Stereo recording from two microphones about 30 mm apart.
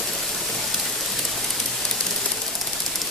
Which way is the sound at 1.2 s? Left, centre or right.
Centre.